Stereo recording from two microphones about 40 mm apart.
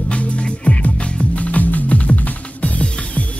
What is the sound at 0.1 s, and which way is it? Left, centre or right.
Music, left.